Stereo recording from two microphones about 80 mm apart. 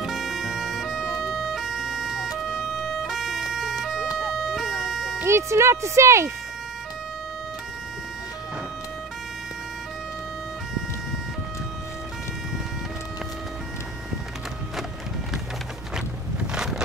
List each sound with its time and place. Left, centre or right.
0.0 s music: centre
1.3 s emergency vehicle: centre
4.2 s vehicle: centre
5.2 s speech: right
15.9 s a sound: centre